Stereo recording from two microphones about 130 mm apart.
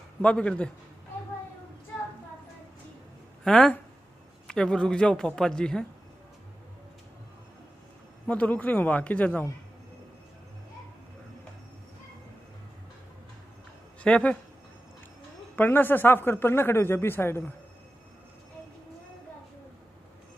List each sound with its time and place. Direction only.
0.2 s a man's voice: 10° left (ahead or behind)
3.4 s a man's voice: 10° left (ahead or behind)
8.3 s a man's voice: 10° left (ahead or behind)
14.0 s a man's voice: 10° left (ahead or behind)
15.5 s a man's voice: 15° left (ahead or behind)